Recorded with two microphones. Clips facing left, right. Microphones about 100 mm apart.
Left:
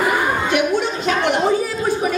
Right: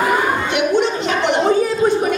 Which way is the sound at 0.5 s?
20° right (ahead or behind).